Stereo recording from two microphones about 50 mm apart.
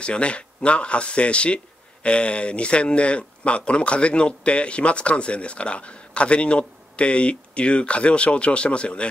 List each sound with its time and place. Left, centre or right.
0.0 s speech: left